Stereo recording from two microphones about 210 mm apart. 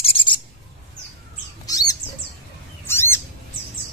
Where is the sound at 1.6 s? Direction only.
15° left (ahead or behind).